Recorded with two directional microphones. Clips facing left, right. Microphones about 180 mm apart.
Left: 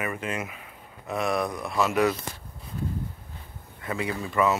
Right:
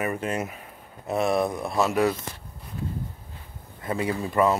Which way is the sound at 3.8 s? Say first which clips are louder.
Right 3 dB; 40° right (ahead or behind).